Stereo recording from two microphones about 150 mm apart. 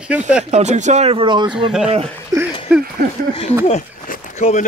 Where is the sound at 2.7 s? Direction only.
5° right (ahead or behind).